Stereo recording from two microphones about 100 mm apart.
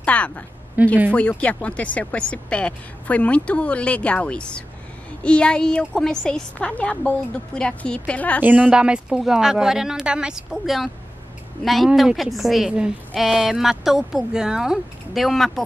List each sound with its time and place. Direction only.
0.0 s a woman's voice: 10° left (ahead or behind)
0.8 s speech: 15° right (ahead or behind)
1.1 s speech: 15° left (ahead or behind)
8.4 s a woman's voice: 15° right (ahead or behind); by 15.6 s centre (ahead or behind)